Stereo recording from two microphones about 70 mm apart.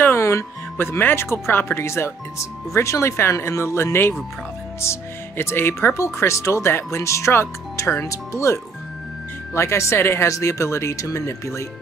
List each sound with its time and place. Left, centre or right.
0.0 s speech: left